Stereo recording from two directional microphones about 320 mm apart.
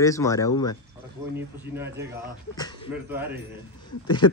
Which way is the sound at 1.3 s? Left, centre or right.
Centre.